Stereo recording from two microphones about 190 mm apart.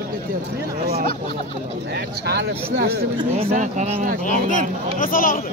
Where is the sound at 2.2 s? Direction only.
60° right (ahead or behind).